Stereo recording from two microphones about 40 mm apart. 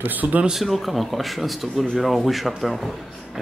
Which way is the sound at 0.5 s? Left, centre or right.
Centre.